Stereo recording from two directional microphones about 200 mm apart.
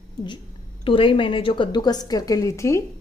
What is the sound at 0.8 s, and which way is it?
A woman's voice, 25° left (ahead or behind).